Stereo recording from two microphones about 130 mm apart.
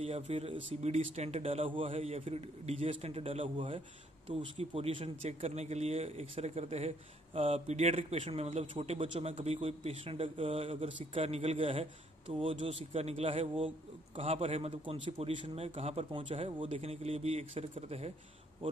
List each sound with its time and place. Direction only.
0.0 s speech: 50° right (ahead or behind)
16.1 s speech: 40° right (ahead or behind)